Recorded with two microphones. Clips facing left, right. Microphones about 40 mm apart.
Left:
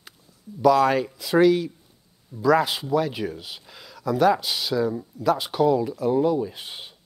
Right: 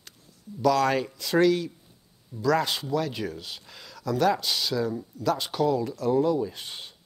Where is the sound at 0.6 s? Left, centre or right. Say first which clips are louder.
Left 4 dB; centre.